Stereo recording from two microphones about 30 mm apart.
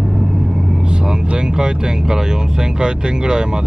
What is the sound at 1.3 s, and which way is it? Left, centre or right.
Speech, right.